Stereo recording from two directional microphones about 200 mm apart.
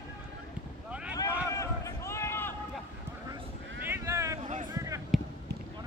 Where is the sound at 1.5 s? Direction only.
15° left (ahead or behind).